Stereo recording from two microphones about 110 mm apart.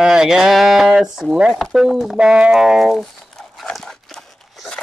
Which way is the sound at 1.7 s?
5° right (ahead or behind).